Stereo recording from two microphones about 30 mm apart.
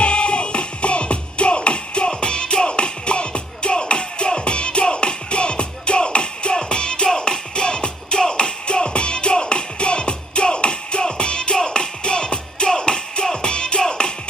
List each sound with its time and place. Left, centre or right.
0.0 s music: left